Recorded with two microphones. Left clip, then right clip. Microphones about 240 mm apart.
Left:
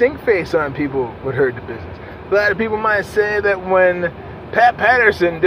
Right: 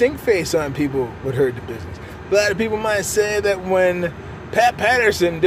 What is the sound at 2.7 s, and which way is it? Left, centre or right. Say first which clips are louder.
A man's voice: left 3 dB; centre.